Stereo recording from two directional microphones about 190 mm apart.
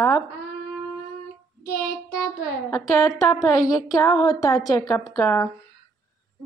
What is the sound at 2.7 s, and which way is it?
Speech, 15° left (ahead or behind).